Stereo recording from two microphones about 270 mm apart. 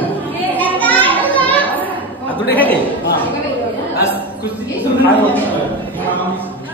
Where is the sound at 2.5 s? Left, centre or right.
Centre.